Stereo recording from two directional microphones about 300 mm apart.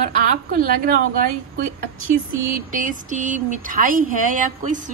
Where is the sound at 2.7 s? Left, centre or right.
Right.